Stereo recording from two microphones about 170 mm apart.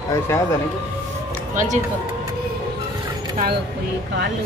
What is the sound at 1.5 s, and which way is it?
Speech, 50° right (ahead or behind).